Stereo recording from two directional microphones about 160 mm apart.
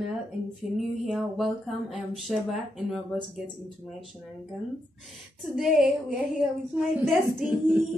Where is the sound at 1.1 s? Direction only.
Centre (ahead or behind).